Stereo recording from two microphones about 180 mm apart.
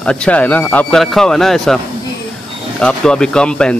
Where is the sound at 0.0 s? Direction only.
5° left (ahead or behind).